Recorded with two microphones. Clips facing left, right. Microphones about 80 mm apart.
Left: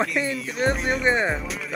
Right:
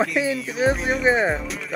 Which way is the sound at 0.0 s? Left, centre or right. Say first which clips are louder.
Right 3 dB; centre.